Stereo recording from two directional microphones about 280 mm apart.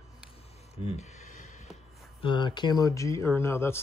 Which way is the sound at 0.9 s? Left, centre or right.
Left.